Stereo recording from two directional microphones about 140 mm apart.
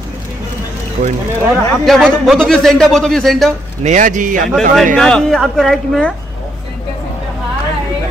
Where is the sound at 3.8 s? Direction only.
65° right (ahead or behind).